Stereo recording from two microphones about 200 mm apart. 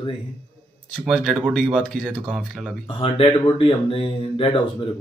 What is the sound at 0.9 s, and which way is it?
Speech, centre (ahead or behind).